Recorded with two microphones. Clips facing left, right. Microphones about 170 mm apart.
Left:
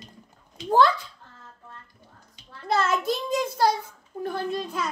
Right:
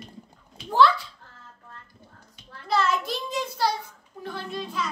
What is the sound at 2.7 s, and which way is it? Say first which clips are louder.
Child singing: left 1 dB; 45° left (ahead or behind).